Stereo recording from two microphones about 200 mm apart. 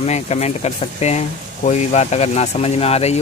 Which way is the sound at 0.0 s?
35° left (ahead or behind).